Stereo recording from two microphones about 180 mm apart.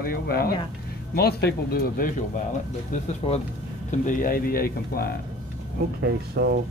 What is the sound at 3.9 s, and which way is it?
Speech, 45° left (ahead or behind).